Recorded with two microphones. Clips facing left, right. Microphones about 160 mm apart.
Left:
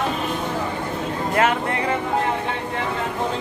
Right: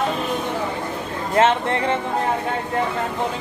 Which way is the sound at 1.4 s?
25° right (ahead or behind).